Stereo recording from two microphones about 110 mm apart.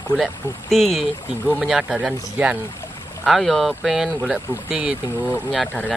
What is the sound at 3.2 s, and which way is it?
Speech, centre (ahead or behind).